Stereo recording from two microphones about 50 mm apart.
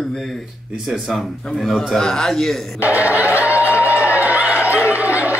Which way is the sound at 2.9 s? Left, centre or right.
Right.